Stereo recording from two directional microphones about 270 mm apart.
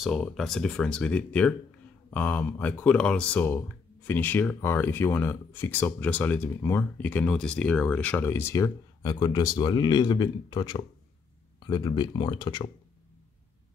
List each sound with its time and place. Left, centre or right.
0.0 s speech: centre